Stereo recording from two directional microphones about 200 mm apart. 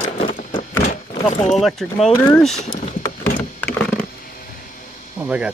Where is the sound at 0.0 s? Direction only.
25° left (ahead or behind).